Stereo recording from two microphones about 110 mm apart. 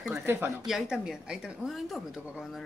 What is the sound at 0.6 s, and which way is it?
Speech, 5° right (ahead or behind).